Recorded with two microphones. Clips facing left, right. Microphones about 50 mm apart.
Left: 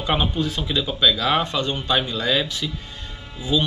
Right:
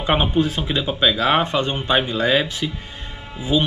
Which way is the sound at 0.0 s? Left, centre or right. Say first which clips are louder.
Right 4 dB; right.